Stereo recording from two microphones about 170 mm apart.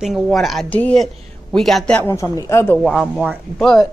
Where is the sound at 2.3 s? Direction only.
15° left (ahead or behind).